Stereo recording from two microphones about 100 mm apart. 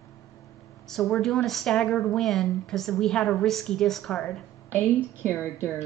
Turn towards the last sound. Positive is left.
turn(degrees=20)  # may be behind; listen again after turning